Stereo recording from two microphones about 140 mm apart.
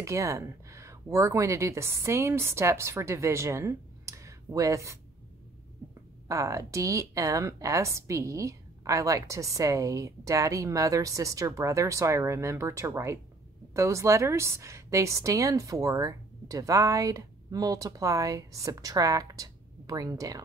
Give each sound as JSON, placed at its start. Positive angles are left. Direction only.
{"t": 0.0, "sound": "speech", "side_deg": -20}
{"t": 6.2, "sound": "speech", "side_deg": -20}